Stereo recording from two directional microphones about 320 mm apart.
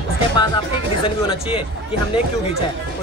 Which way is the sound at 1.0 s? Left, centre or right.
Centre.